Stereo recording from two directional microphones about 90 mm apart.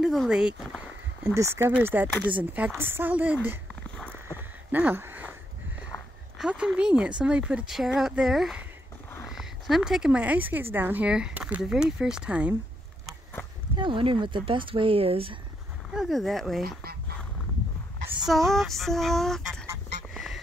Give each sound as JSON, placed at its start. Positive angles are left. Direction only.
{"t": 0.0, "sound": "speech", "side_deg": -5}
{"t": 1.2, "sound": "speech", "side_deg": -30}
{"t": 1.7, "sound": "speech", "side_deg": -20}
{"t": 4.7, "sound": "a sound", "side_deg": -20}
{"t": 6.3, "sound": "speech", "side_deg": -10}
{"t": 7.7, "sound": "female singing", "side_deg": -5}
{"t": 9.3, "sound": "speech", "side_deg": -5}
{"t": 11.1, "sound": "speech", "side_deg": -10}
{"t": 13.7, "sound": "speech", "side_deg": -70}
{"t": 15.9, "sound": "female singing", "side_deg": -5}
{"t": 18.2, "sound": "female singing", "side_deg": 0}